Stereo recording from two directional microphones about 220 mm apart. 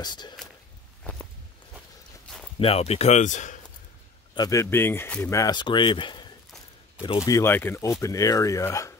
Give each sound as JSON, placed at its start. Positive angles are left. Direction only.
{"t": 0.0, "sound": "speech", "side_deg": 20}
{"t": 1.1, "sound": "walk", "side_deg": 5}
{"t": 2.6, "sound": "speech", "side_deg": 25}
{"t": 4.4, "sound": "speech", "side_deg": 15}